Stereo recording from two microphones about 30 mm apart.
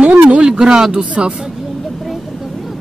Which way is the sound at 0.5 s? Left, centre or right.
Right.